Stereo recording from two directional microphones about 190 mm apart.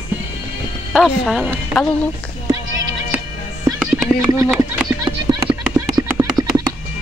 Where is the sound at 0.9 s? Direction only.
Centre (ahead or behind).